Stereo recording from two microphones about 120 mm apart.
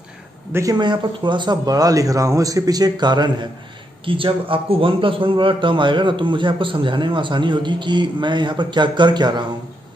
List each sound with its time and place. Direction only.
0.5 s a man's voice: 25° right (ahead or behind)
0.7 s a man's voice: 40° right (ahead or behind)